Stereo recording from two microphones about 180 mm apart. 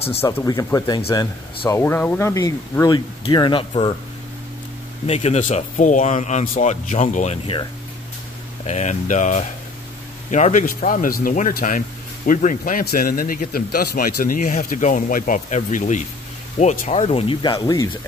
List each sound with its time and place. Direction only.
0.4 s speech: 15° left (ahead or behind)
1.7 s speech: 15° left (ahead or behind)
5.0 s speech: 35° left (ahead or behind)
8.6 s a man's voice: 40° left (ahead or behind); by 17.8 s 25° left (ahead or behind)